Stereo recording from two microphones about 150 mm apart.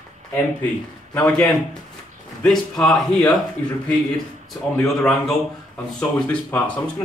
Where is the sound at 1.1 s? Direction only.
10° left (ahead or behind).